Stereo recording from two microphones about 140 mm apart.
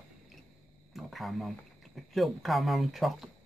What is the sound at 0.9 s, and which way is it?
Speech, centre (ahead or behind).